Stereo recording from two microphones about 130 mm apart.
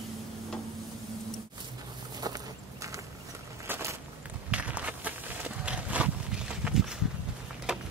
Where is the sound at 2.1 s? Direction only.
30° right (ahead or behind).